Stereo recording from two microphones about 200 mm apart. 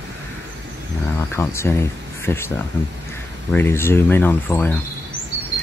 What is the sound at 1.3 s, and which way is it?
Speech, 15° left (ahead or behind).